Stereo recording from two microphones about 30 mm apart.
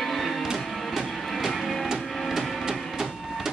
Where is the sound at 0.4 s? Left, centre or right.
Centre.